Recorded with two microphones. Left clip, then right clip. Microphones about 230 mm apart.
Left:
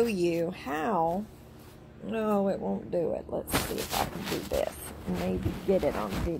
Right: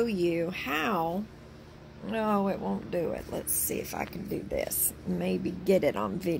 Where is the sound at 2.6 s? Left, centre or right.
Right.